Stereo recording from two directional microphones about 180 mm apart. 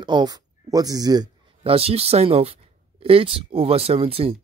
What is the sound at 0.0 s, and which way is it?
Speech, 25° right (ahead or behind).